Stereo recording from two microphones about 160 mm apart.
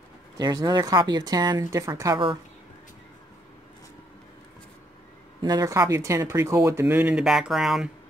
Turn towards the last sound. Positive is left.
turn(degrees=0)  # may be behind; listen again after turning